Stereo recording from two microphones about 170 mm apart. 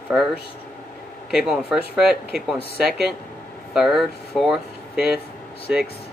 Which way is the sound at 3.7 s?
Centre (ahead or behind).